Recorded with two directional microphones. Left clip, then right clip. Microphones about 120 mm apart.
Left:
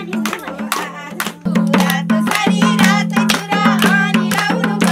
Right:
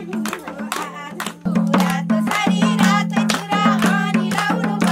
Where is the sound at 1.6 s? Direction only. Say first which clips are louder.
Left 3 dB; 10° right (ahead or behind).